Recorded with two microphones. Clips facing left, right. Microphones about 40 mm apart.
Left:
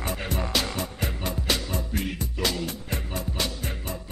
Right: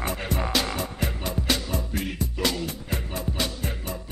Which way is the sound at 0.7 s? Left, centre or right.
Centre.